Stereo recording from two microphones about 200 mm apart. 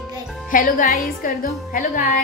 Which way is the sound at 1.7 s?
40° left (ahead or behind).